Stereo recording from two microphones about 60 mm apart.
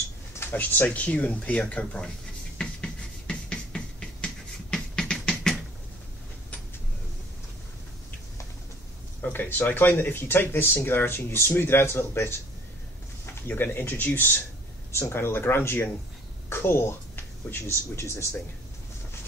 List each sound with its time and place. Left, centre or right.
0.4 s speech: left
2.5 s a sound: centre
9.2 s speech: left